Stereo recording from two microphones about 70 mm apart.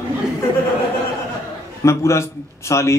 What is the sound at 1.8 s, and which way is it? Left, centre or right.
A man's voice, left.